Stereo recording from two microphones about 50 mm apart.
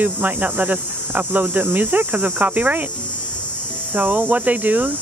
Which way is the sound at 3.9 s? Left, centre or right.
Right.